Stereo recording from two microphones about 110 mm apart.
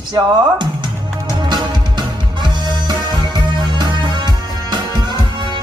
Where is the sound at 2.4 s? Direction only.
40° right (ahead or behind).